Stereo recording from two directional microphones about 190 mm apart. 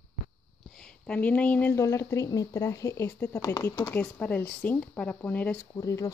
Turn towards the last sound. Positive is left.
turn(degrees=15)  # may be behind; listen again after turning